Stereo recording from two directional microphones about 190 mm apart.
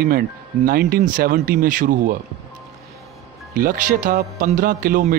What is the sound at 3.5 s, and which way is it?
Speech, 45° right (ahead or behind).